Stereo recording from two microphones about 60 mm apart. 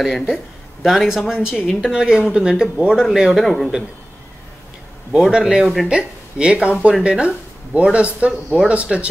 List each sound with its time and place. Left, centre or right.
0.0 s speech: centre
3.4 s speech: centre
5.5 s speech: centre